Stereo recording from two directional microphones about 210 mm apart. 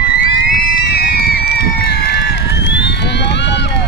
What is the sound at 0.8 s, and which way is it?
Run, 45° left (ahead or behind).